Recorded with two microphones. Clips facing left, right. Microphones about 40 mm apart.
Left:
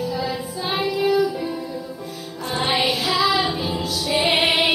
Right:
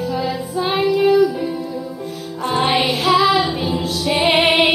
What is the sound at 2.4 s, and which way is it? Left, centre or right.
Music, right.